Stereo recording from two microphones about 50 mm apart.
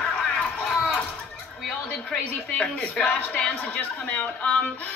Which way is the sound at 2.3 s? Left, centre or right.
Left.